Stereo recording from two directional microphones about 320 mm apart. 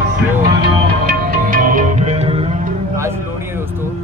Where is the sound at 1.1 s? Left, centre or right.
Right; by 3.6 s centre.